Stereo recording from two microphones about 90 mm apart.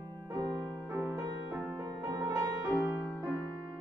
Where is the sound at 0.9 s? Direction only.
25° right (ahead or behind).